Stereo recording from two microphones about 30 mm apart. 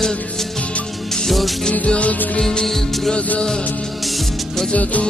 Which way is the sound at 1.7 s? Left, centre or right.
Left.